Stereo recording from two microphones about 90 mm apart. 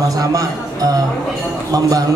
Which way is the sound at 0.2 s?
40° right (ahead or behind).